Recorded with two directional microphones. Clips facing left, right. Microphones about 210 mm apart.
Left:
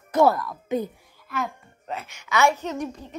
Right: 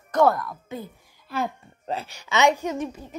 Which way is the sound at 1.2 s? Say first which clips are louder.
Right 2 dB; 30° right (ahead or behind).